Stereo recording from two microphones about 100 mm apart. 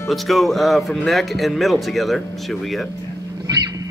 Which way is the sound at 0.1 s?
Centre (ahead or behind).